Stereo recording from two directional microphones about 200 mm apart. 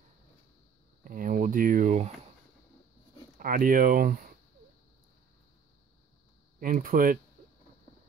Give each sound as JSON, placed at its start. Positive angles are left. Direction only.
{"t": 1.0, "sound": "speech", "side_deg": -40}
{"t": 3.3, "sound": "speech", "side_deg": -45}
{"t": 6.6, "sound": "speech", "side_deg": -45}